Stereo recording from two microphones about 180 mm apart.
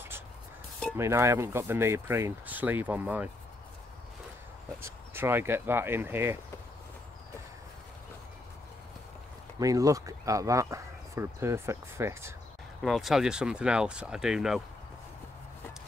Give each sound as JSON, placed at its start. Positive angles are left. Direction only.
{"t": 0.9, "sound": "speech", "side_deg": -15}
{"t": 4.8, "sound": "speech", "side_deg": -15}
{"t": 9.6, "sound": "speech", "side_deg": -20}
{"t": 12.8, "sound": "speech", "side_deg": 0}